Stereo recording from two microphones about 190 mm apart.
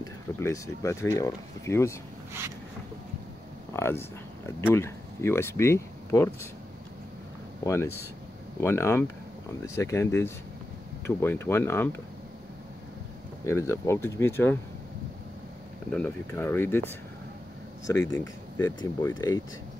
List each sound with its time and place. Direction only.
0.0 s speech: 15° left (ahead or behind)
3.7 s speech: 15° left (ahead or behind)
7.6 s speech: 15° left (ahead or behind)
13.5 s speech: 15° left (ahead or behind)
15.9 s speech: 10° left (ahead or behind)
17.8 s speech: 15° left (ahead or behind)